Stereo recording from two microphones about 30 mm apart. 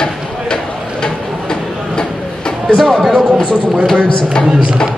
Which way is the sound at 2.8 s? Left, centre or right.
Centre.